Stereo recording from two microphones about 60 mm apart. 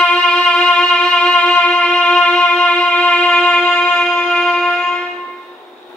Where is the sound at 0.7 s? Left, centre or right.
Centre.